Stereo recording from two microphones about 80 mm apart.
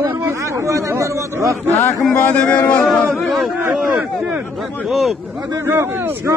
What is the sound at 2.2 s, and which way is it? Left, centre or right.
Speech, centre.